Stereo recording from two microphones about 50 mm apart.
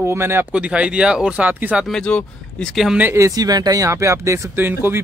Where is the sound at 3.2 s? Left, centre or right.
Right.